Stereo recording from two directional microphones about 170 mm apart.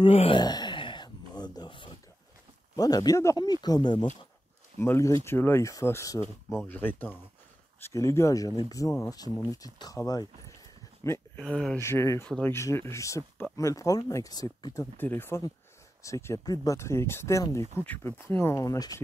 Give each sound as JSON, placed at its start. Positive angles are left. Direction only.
{"t": 0.0, "sound": "a sound", "side_deg": 30}
{"t": 2.7, "sound": "speech", "side_deg": 20}
{"t": 4.7, "sound": "speech", "side_deg": 15}
{"t": 11.3, "sound": "speech", "side_deg": 5}
{"t": 11.8, "sound": "speech", "side_deg": 15}